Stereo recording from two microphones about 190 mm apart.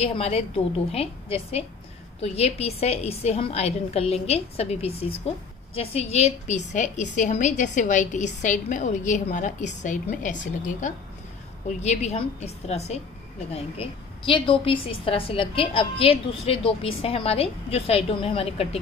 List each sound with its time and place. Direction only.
0.0 s a woman's voice: 30° left (ahead or behind)